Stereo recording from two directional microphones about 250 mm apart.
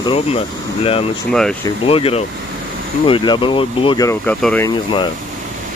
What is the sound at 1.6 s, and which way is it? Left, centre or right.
Speech, left.